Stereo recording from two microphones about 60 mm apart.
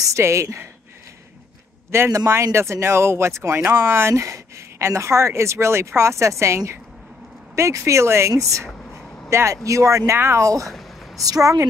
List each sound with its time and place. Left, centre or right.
0.2 s speech: right
2.1 s speech: right
4.1 s speech: right
9.3 s speech: right
10.4 s speech: right
11.2 s speech: right